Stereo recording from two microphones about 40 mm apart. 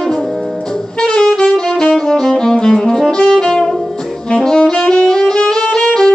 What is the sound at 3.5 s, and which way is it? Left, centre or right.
Music, centre.